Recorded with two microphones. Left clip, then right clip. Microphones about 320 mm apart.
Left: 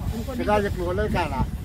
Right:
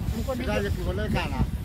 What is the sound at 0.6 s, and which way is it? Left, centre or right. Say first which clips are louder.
Speech: left 6 dB; centre.